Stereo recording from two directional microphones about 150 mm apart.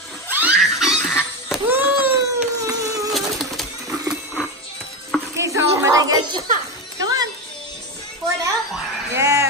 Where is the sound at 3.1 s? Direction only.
Centre (ahead or behind).